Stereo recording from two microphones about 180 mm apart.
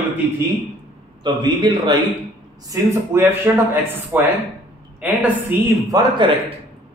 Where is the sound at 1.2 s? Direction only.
25° right (ahead or behind).